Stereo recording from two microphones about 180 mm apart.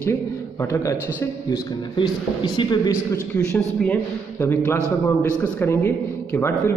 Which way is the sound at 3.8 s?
10° left (ahead or behind).